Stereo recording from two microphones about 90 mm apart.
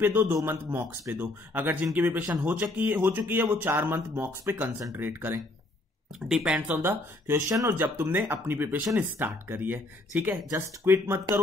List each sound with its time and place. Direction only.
0.0 s speech: 25° right (ahead or behind)
6.1 s speech: 5° right (ahead or behind)
6.7 s speech: 25° right (ahead or behind)